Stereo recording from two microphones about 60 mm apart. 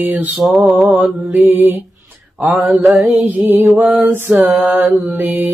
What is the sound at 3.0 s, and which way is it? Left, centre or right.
Mantra, right.